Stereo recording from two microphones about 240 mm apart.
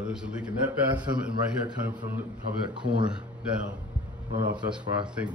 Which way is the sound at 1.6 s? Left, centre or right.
Centre.